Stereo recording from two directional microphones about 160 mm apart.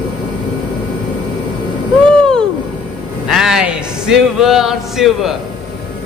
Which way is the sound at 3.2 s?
Centre (ahead or behind).